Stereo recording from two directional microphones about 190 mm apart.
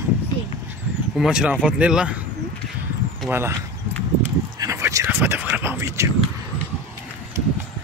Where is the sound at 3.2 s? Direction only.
Centre (ahead or behind).